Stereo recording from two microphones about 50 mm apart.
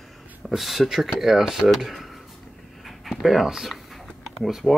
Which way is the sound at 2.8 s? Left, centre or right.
Centre.